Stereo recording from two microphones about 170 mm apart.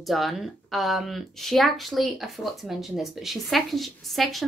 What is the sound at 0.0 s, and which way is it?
A woman's voice, centre (ahead or behind).